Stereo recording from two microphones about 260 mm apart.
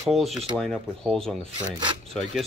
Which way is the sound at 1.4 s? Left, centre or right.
Right.